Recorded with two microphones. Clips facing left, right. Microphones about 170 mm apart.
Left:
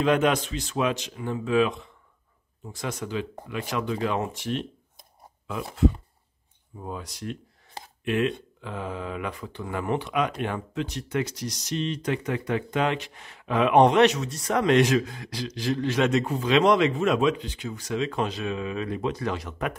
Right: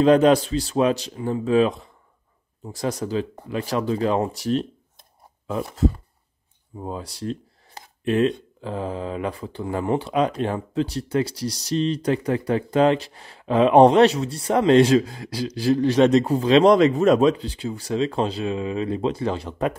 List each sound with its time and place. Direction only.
0.0 s speech: 35° right (ahead or behind)
6.8 s speech: 30° right (ahead or behind)